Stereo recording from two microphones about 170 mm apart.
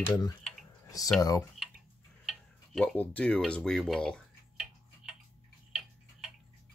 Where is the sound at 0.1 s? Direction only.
20° left (ahead or behind).